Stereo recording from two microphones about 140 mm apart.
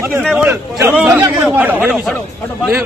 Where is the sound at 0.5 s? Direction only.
15° right (ahead or behind).